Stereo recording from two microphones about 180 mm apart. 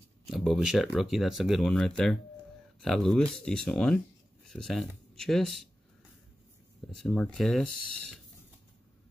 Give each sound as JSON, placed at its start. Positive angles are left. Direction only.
{"t": 0.3, "sound": "speech", "side_deg": 0}
{"t": 6.9, "sound": "speech", "side_deg": 5}